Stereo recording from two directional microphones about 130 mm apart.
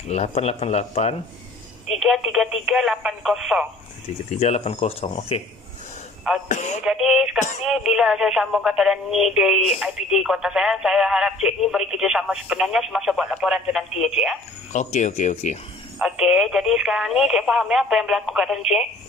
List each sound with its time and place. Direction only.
0.1 s speech: 55° left (ahead or behind)
2.0 s speech: centre (ahead or behind)
4.3 s speech: 55° left (ahead or behind)
6.5 s speech: 65° left (ahead or behind)
6.8 s speech: 5° right (ahead or behind)
14.7 s speech: 65° left (ahead or behind)
16.0 s speech: 5° right (ahead or behind)